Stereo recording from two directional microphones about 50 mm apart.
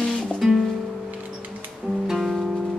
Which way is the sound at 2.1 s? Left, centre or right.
Centre.